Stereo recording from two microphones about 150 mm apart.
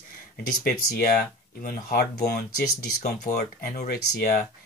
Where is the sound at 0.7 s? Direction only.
75° left (ahead or behind).